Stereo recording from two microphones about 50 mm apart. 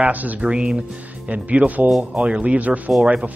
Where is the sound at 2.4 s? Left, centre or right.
Right.